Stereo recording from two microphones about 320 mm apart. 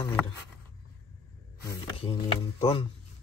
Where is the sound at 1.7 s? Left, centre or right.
Centre.